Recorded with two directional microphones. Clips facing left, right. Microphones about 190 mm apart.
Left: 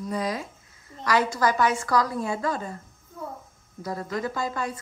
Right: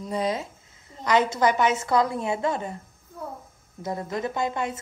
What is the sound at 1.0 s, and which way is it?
A woman's voice, 20° right (ahead or behind).